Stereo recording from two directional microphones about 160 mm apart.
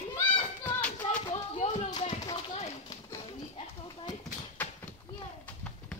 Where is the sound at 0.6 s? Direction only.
10° left (ahead or behind).